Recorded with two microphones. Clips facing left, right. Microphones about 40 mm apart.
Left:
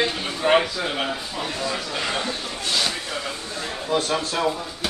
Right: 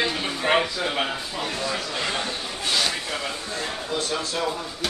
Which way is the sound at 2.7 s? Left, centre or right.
Centre.